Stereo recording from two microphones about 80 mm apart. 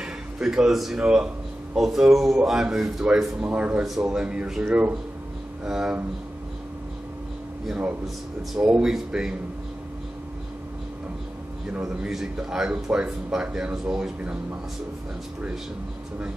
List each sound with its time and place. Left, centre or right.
0.0 s speech: centre
3.8 s speech: centre
5.7 s speech: centre
8.4 s speech: centre
11.6 s speech: centre